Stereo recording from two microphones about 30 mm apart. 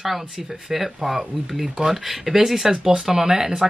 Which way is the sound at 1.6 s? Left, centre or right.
Right.